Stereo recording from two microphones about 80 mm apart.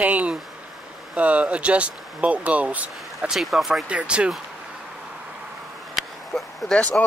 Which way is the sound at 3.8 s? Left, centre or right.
Centre.